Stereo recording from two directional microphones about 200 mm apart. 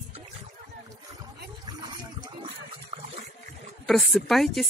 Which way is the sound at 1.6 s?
20° right (ahead or behind).